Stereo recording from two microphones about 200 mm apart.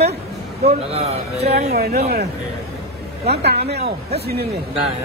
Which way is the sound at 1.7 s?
50° right (ahead or behind).